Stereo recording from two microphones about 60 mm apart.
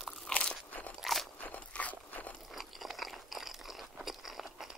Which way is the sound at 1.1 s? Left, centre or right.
Centre.